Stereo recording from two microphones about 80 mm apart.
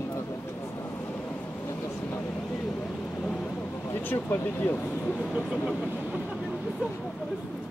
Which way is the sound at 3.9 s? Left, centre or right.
Left.